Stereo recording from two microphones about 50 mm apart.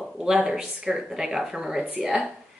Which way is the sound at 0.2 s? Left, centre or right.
Centre.